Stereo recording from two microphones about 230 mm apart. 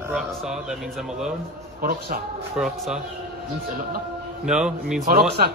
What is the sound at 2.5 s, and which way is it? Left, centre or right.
Speech, centre.